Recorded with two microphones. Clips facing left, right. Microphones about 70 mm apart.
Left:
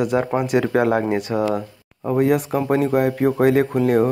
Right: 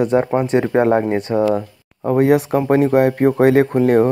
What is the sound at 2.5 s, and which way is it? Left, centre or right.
Speech, right.